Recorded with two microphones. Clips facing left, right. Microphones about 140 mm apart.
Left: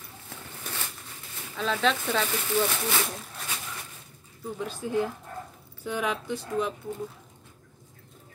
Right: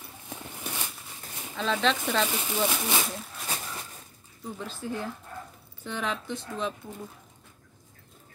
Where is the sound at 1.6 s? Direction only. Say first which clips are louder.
Even; 5° left (ahead or behind).